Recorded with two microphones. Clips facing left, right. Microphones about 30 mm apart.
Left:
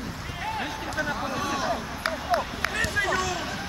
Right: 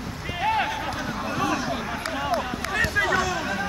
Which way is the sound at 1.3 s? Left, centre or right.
Centre.